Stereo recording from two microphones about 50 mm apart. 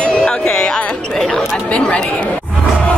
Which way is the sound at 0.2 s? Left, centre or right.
Centre.